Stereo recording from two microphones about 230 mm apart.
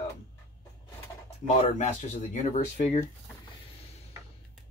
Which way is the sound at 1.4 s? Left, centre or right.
Left.